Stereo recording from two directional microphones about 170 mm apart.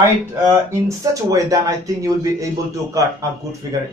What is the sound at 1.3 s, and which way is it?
Speech, 20° right (ahead or behind).